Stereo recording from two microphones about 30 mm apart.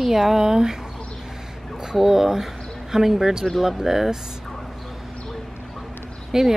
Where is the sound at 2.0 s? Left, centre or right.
Centre.